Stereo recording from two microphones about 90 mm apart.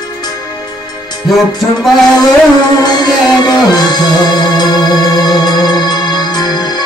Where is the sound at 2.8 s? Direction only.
50° left (ahead or behind).